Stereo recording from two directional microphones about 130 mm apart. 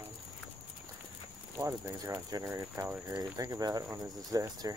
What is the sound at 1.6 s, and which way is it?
Speech, 25° right (ahead or behind).